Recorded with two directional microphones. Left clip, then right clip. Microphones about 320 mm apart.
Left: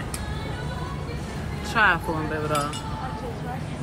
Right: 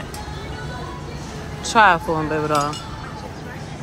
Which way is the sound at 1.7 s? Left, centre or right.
Centre.